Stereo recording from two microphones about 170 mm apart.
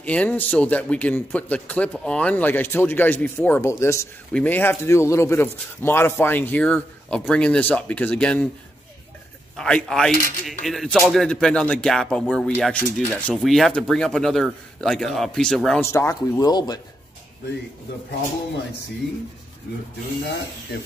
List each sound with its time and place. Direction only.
0.0 s speech: 5° left (ahead or behind)
9.6 s speech: 5° left (ahead or behind)
15.8 s speech: 15° left (ahead or behind)
19.7 s speech: 65° left (ahead or behind)